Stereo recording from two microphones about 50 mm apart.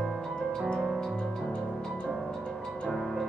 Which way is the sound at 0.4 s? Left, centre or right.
Centre.